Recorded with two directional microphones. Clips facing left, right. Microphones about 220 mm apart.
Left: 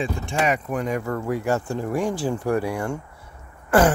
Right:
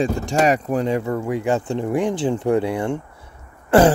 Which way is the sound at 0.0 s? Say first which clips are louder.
Right 6 dB; 40° right (ahead or behind).